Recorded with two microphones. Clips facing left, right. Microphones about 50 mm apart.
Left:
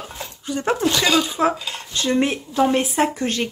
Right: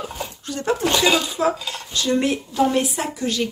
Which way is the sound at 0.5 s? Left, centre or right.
Centre.